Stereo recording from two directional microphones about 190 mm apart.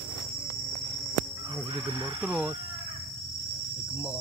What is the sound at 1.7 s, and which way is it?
Speech, 25° right (ahead or behind).